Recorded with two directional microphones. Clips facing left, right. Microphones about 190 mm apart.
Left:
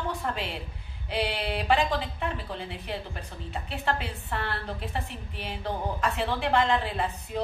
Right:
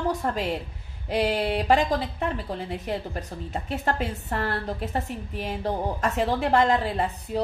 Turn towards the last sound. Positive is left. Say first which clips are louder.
# right 4 dB
turn(degrees=-40)  # may be behind; listen again after turning